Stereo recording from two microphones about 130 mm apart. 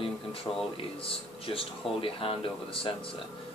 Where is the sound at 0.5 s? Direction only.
20° left (ahead or behind).